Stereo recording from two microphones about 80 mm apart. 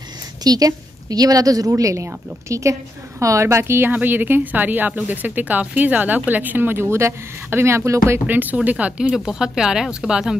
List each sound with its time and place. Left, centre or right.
0.4 s a woman's voice: right
8.3 s a woman's voice: right